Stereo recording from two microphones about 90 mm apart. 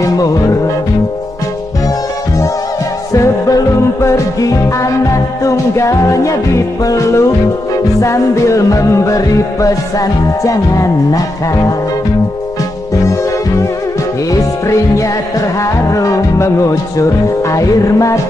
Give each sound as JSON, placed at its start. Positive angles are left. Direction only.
{"t": 0.0, "sound": "music", "side_deg": 40}
{"t": 3.1, "sound": "music", "side_deg": 40}
{"t": 14.3, "sound": "music", "side_deg": 40}